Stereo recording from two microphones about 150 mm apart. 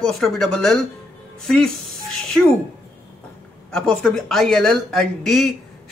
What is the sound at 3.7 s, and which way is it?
A woman's voice, 5° left (ahead or behind).